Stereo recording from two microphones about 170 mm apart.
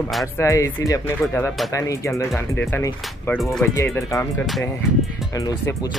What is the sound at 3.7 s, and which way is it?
Speech, 15° left (ahead or behind).